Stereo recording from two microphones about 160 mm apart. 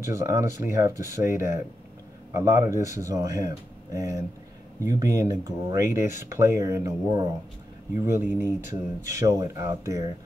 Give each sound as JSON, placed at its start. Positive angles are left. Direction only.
{"t": 0.0, "sound": "speech", "side_deg": -20}